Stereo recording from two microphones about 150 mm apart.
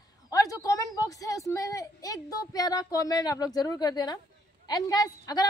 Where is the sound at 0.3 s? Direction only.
25° left (ahead or behind).